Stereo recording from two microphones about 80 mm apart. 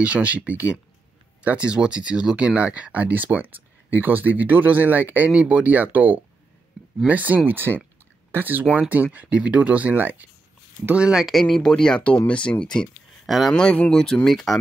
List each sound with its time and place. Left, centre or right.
0.0 s speech: centre